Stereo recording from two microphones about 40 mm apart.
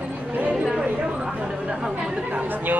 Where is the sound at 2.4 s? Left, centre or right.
Right.